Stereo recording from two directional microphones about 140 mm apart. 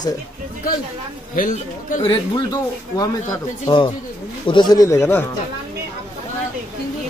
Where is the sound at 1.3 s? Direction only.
70° left (ahead or behind).